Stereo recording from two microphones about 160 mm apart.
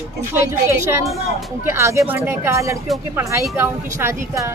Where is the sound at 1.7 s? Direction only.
20° right (ahead or behind).